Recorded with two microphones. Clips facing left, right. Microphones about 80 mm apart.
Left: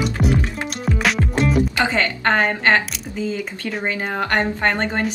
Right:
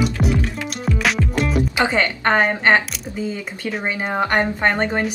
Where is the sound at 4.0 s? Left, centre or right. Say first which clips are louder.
Right 3 dB; centre.